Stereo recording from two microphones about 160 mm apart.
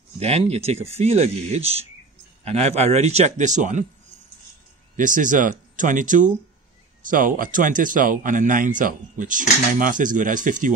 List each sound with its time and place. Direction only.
0.2 s a man's voice: 40° right (ahead or behind)
4.9 s speech: 55° right (ahead or behind)